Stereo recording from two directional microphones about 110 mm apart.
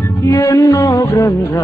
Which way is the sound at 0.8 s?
20° left (ahead or behind).